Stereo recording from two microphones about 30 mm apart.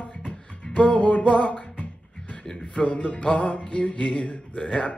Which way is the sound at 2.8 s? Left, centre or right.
Left.